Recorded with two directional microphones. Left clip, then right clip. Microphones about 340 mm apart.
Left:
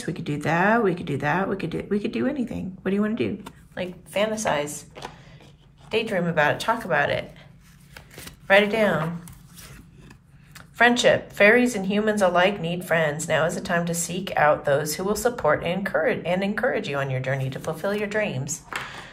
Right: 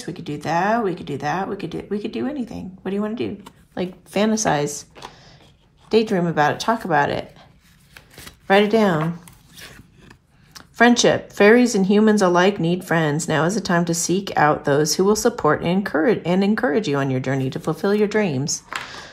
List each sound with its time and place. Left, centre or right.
0.0 s speech: centre
4.2 s speech: centre
5.9 s speech: centre
7.9 s chopping: centre
8.5 s speech: centre
9.6 s a sound: centre
10.5 s speech: centre